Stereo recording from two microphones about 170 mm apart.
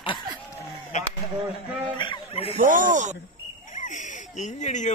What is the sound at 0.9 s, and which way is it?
Speech, 45° left (ahead or behind).